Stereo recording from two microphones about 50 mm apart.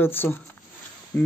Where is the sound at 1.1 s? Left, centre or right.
Left.